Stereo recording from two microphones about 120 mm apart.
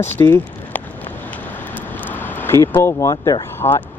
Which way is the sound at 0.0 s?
20° left (ahead or behind).